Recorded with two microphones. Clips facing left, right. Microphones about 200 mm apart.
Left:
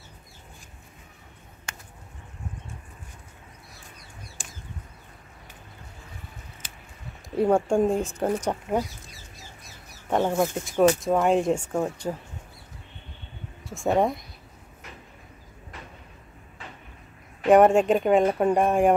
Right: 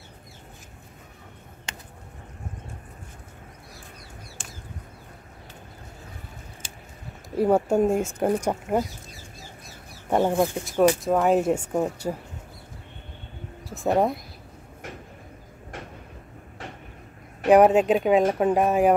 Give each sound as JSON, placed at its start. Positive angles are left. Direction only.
{"t": 6.6, "sound": "a sound", "side_deg": -25}
{"t": 7.3, "sound": "speech", "side_deg": -5}
{"t": 10.0, "sound": "speech", "side_deg": -10}
{"t": 10.5, "sound": "speech", "side_deg": 0}
{"t": 13.7, "sound": "speech", "side_deg": 0}
{"t": 17.5, "sound": "speech", "side_deg": 0}